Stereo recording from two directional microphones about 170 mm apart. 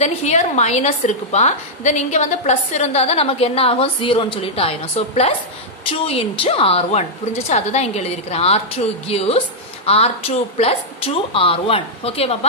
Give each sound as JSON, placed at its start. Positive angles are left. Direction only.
{"t": 0.0, "sound": "a woman's voice", "side_deg": 40}